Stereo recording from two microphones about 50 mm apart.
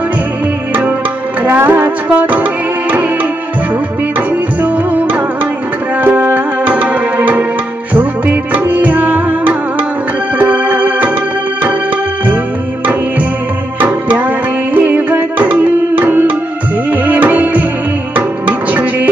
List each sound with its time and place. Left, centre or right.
1.6 s music: right
6.0 s music: right
13.7 s music: right
18.7 s music: right